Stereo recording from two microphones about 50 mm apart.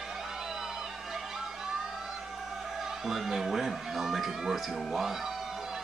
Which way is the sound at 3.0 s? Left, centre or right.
Centre.